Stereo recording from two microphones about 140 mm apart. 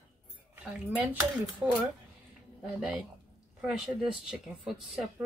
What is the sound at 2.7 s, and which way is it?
Speech, 5° right (ahead or behind).